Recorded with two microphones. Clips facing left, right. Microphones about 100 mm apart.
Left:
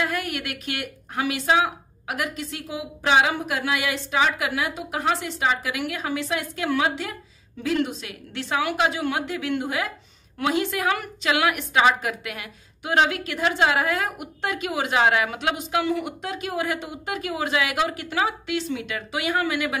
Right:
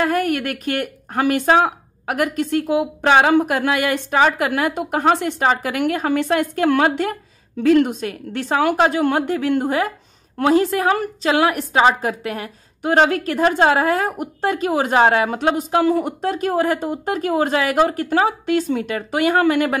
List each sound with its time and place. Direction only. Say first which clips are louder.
0.0 s a woman's voice: right 8 dB; 45° right (ahead or behind)